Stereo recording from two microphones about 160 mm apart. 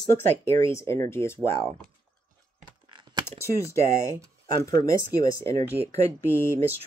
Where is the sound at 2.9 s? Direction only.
30° right (ahead or behind).